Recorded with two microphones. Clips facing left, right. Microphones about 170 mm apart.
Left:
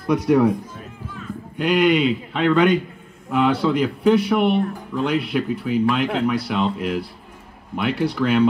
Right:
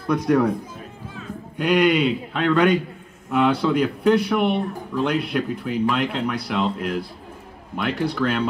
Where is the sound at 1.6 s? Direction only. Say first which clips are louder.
Left 1 dB; centre (ahead or behind).